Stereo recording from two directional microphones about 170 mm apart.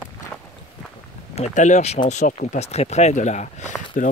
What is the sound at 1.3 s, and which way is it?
Speech, 45° left (ahead or behind).